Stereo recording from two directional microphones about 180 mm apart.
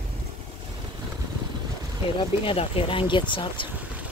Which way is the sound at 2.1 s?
30° left (ahead or behind).